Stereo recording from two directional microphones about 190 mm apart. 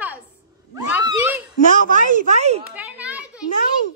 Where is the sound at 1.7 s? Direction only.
40° right (ahead or behind).